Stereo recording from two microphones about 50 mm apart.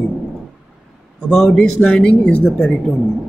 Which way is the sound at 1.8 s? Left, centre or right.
Left.